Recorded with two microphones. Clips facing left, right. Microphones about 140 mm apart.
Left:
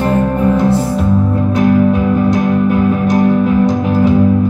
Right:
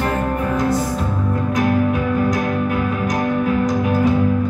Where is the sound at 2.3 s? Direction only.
30° left (ahead or behind).